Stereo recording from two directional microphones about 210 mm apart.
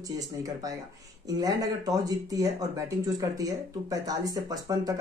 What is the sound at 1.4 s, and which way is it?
Speech, 15° right (ahead or behind).